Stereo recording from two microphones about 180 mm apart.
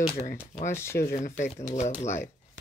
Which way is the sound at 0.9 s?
50° left (ahead or behind).